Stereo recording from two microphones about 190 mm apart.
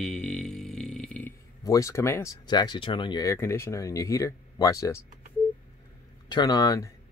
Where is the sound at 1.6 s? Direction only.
15° left (ahead or behind).